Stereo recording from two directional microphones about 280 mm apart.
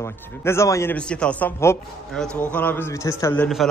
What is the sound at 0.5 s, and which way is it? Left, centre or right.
A man's voice, centre.